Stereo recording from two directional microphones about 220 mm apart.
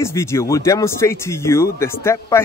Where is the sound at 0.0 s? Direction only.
10° left (ahead or behind).